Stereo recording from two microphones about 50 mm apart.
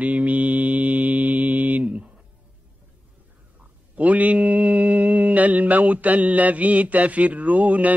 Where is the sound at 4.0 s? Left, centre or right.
Right.